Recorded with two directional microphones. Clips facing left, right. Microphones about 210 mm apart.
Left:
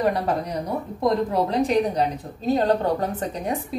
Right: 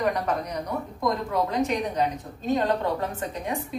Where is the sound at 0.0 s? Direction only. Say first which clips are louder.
Left 3 dB; 30° left (ahead or behind).